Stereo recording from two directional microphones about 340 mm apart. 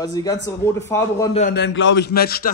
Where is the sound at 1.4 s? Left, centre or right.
Left.